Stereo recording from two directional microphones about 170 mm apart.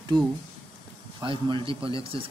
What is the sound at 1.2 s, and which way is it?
A man's voice, 30° right (ahead or behind).